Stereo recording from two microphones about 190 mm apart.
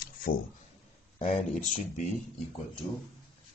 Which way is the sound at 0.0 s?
50° left (ahead or behind).